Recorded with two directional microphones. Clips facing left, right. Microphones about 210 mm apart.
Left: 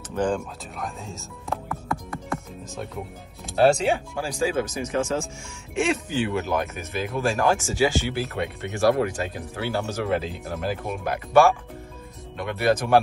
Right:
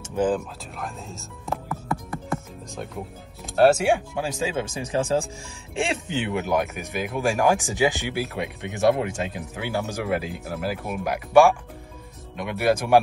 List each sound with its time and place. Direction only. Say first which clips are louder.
0.1 s speech: right 2 dB; 5° right (ahead or behind)
3.8 s speech: right 2 dB; 15° right (ahead or behind)